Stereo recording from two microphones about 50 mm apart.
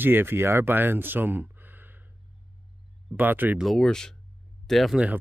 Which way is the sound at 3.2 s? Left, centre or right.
Right.